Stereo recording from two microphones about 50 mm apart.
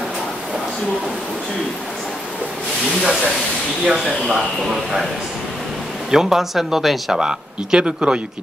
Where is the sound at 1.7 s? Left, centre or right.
Centre.